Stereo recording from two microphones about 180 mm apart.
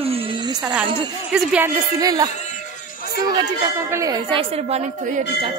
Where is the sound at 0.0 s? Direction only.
30° right (ahead or behind).